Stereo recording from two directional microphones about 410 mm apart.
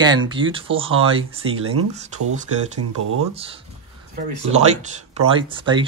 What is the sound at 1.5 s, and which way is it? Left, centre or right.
Speech, right.